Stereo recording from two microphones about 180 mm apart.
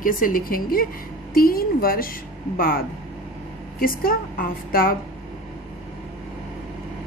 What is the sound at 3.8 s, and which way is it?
A woman's voice, 55° left (ahead or behind).